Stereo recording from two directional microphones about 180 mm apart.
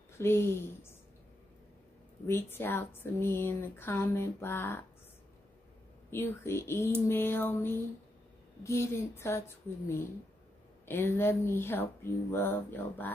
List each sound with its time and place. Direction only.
0.2 s speech: 15° left (ahead or behind)
2.2 s speech: 10° left (ahead or behind)
6.0 s speech: 15° left (ahead or behind)